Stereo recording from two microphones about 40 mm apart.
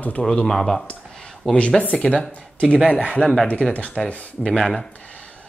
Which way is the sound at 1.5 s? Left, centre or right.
Left.